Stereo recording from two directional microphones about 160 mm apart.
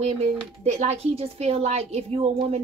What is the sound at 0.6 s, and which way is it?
A woman's voice, 40° right (ahead or behind).